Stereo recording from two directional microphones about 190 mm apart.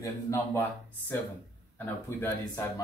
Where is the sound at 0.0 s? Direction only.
15° left (ahead or behind).